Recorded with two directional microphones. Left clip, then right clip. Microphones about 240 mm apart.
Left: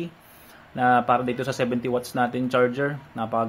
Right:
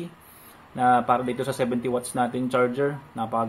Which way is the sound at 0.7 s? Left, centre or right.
Centre.